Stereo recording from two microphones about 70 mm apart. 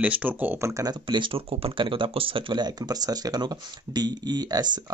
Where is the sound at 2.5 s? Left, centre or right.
Right.